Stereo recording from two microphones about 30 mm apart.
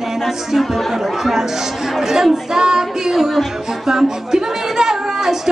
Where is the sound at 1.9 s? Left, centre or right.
Centre.